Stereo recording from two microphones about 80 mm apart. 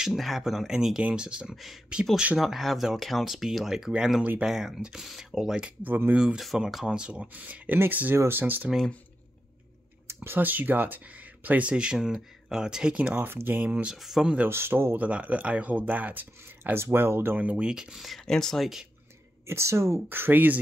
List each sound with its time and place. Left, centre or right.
0.0 s speech: centre
1.5 s speech: centre
5.8 s speech: right
6.1 s speech: centre; by 8.6 s right
10.0 s speech: right
13.9 s speech: centre
14.5 s speech: right
15.0 s speech: centre
17.4 s speech: centre
19.4 s speech: right